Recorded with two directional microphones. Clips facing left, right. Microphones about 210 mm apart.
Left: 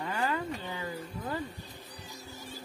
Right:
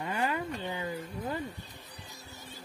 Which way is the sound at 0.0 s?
20° right (ahead or behind).